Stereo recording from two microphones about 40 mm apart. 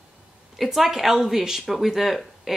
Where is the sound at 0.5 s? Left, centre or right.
Centre.